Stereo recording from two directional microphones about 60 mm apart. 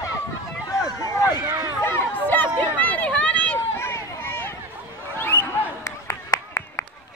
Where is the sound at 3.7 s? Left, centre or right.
Left.